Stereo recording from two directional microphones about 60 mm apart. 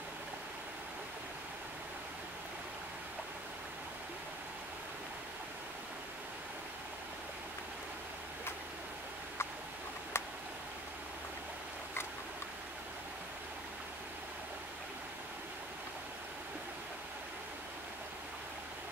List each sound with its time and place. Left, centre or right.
10.1 s tick: left